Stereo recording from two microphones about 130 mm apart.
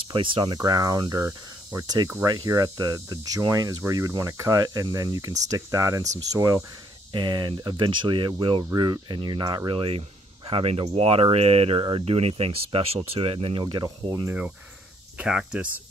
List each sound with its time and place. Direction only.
0.1 s speech: 40° right (ahead or behind)
0.6 s hum: 30° right (ahead or behind)
1.7 s speech: 30° right (ahead or behind)
2.2 s hum: 30° right (ahead or behind)
7.1 s speech: 35° right (ahead or behind)
15.1 s speech: 5° right (ahead or behind)